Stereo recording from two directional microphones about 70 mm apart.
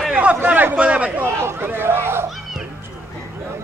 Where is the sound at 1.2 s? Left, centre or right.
Right.